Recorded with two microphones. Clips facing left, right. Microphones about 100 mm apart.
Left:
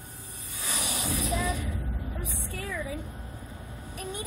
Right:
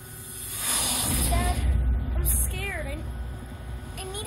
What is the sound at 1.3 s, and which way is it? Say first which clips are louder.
Speech: right 1 dB; 45° right (ahead or behind).